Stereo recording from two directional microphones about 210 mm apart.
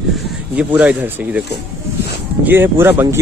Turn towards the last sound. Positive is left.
turn(degrees=-10)  # may be behind; listen again after turning